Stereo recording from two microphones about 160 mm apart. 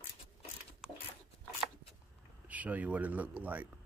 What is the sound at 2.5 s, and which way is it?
Speech, 10° right (ahead or behind).